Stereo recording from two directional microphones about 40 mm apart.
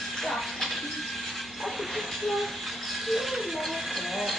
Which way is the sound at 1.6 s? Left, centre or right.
Centre.